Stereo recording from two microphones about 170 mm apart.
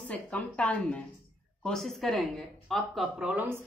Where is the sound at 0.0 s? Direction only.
10° left (ahead or behind).